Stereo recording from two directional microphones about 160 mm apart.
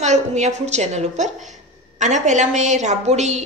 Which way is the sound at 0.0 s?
45° right (ahead or behind).